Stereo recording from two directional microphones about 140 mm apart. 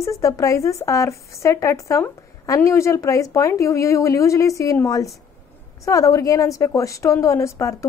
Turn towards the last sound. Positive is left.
turn(degrees=20)  # may be behind; listen again after turning